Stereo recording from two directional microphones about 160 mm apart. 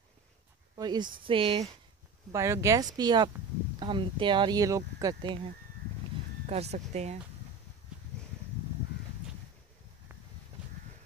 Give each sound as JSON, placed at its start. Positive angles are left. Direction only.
{"t": 0.7, "sound": "speech", "side_deg": -25}
{"t": 2.3, "sound": "speech", "side_deg": -20}
{"t": 6.4, "sound": "speech", "side_deg": -40}